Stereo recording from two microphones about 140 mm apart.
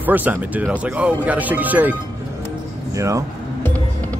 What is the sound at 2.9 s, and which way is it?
Music, 20° right (ahead or behind).